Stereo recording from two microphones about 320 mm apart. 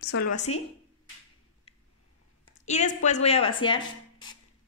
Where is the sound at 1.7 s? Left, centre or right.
Centre.